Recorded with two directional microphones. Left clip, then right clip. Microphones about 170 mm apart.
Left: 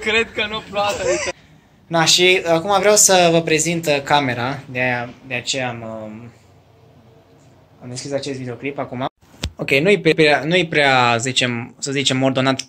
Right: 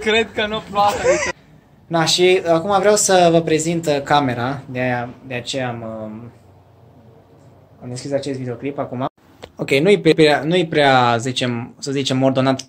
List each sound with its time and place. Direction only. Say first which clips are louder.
0.0 s a man's voice: right 1 dB; 85° right
0.8 s speech: right 4 dB; 25° right (ahead or behind)
1.9 s speech: left 1 dB; centre (ahead or behind)
7.9 s speech: right 2 dB; 10° right (ahead or behind)